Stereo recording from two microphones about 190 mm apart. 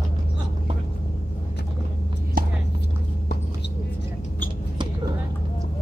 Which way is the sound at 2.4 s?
50° right (ahead or behind).